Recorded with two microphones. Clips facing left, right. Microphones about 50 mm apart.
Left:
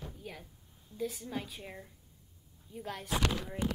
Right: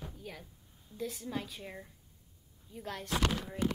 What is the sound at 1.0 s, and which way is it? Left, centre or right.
A woman's voice, centre.